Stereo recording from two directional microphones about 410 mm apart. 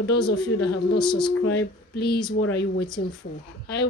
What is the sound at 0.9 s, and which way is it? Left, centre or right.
Speech, centre.